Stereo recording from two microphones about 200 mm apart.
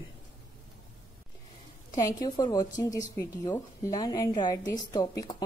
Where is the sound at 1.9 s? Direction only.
20° left (ahead or behind).